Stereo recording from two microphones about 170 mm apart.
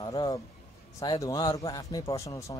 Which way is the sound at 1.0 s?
20° left (ahead or behind).